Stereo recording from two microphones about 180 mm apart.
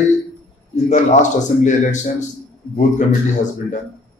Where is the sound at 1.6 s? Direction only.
40° left (ahead or behind).